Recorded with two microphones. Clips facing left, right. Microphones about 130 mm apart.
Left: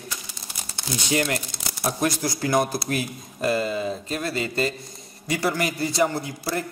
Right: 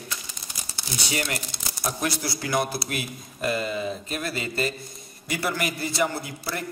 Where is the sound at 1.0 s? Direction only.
40° left (ahead or behind).